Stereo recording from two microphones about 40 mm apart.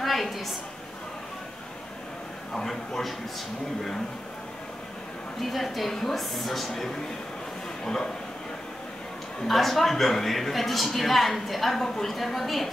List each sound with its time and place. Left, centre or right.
0.0 s a sound: centre
2.5 s speech: centre
5.4 s a woman's voice: centre
9.5 s a woman's voice: centre